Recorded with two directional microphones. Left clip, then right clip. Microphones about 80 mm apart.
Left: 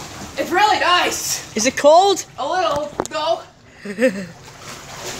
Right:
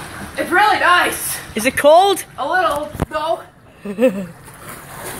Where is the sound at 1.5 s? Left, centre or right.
Left.